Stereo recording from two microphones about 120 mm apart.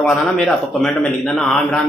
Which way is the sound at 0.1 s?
5° left (ahead or behind).